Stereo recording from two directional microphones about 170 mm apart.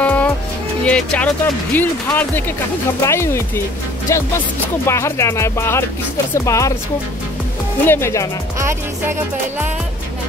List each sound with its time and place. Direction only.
0.0 s music: 10° left (ahead or behind)
0.8 s speech: 5° left (ahead or behind)
7.8 s speech: 15° left (ahead or behind)
8.5 s music: 15° right (ahead or behind)